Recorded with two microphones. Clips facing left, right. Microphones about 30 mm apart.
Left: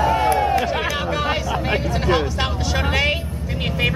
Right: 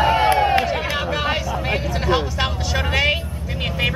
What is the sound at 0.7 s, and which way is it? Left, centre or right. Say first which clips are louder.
Run: even; centre.